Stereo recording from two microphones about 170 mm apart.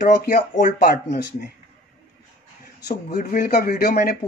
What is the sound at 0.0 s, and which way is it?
Speech, 55° left (ahead or behind).